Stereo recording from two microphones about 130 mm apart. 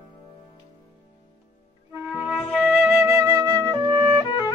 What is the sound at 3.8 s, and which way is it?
Music, 35° right (ahead or behind).